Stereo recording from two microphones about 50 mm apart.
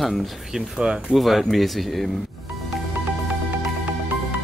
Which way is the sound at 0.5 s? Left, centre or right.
Centre.